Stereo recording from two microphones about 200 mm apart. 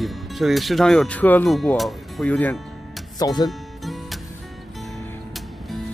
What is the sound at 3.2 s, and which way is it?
Speech, 20° left (ahead or behind).